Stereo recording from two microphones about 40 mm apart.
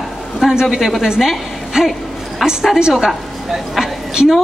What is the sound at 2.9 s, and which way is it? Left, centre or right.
Speech, centre.